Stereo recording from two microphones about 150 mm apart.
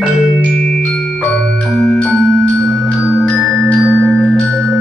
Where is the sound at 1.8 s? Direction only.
5° left (ahead or behind).